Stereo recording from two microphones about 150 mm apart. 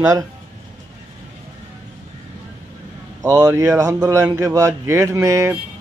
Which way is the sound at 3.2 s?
25° right (ahead or behind).